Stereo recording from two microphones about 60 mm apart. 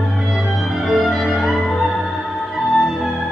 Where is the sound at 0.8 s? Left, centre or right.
Centre.